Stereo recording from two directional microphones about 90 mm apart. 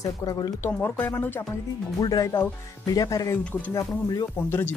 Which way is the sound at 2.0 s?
45° left (ahead or behind).